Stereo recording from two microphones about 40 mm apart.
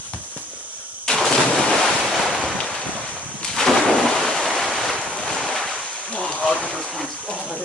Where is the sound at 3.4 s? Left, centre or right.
Centre.